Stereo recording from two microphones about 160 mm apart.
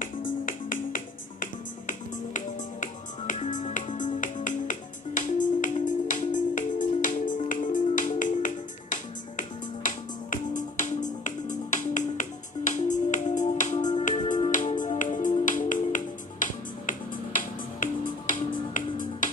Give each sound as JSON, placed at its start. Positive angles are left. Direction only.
{"t": 0.0, "sound": "music", "side_deg": 60}